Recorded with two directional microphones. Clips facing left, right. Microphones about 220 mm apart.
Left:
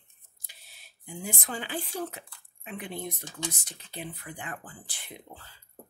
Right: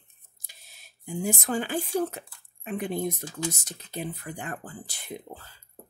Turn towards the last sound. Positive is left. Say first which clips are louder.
# right 7 dB
turn(degrees=-40)  # may be behind; listen again after turning